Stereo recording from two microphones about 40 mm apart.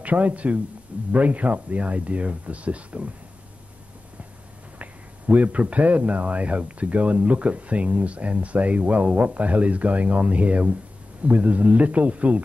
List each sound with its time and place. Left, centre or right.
0.0 s speech: right
4.7 s speech: right